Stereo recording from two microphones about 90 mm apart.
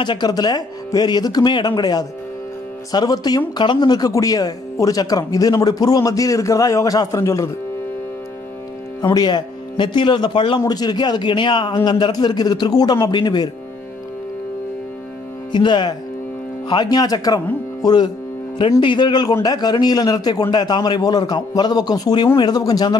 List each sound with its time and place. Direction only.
0.0 s speech: 55° left (ahead or behind); by 7.5 s 35° left (ahead or behind)
9.1 s a man's voice: 55° left (ahead or behind)
10.6 s speech: 50° left (ahead or behind)
15.5 s a man's voice: 60° left (ahead or behind)
18.6 s a man's voice: 65° left (ahead or behind); by 22.2 s 45° left (ahead or behind)
22.2 s a man's voice: 60° left (ahead or behind)
22.6 s speech: 45° left (ahead or behind)